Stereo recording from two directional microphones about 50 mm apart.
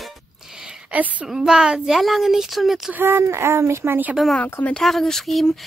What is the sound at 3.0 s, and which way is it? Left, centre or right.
Speech, right.